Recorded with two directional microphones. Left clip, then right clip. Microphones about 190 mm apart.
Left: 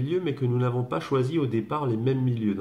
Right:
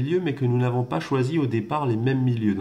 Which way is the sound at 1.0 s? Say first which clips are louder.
Left 1 dB; 40° right (ahead or behind).